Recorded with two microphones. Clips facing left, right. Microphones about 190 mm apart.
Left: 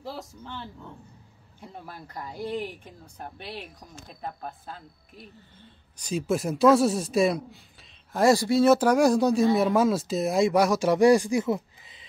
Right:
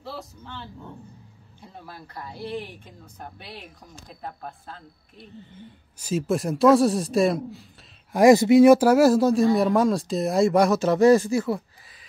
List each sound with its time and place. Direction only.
2.3 s a woman's voice: 45° left (ahead or behind)
4.1 s speech: centre (ahead or behind)
5.5 s speech: 10° right (ahead or behind)
8.1 s speech: 15° right (ahead or behind); by 11.6 s 20° left (ahead or behind)